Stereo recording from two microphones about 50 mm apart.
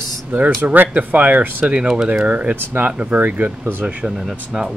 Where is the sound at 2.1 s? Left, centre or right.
Right.